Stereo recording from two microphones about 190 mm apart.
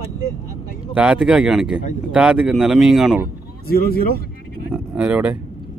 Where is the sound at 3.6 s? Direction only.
50° left (ahead or behind).